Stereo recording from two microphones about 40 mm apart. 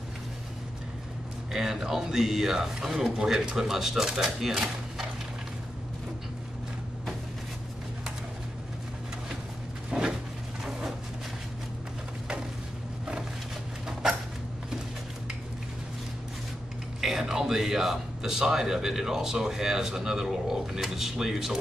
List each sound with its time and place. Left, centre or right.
1.5 s speech: centre
9.8 s a sound: right
17.0 s speech: centre